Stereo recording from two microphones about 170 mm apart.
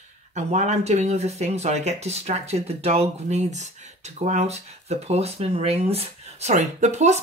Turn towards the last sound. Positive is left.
turn(degrees=-40)  # may be behind; listen again after turning